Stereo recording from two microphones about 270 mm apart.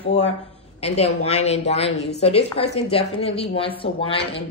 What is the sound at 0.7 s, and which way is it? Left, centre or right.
A woman's voice, left.